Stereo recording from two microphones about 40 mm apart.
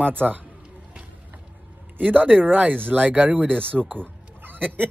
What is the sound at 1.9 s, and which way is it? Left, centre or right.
Speech, right.